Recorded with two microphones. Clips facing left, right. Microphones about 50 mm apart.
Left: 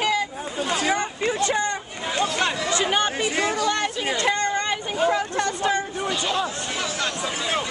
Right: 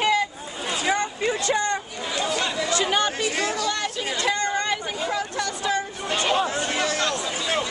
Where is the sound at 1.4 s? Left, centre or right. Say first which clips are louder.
Left 1 dB; left.